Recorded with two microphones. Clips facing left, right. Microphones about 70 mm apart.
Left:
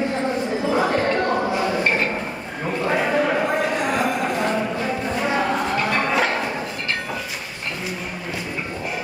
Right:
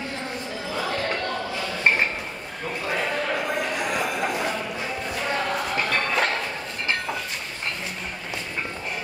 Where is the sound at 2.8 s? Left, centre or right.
Centre.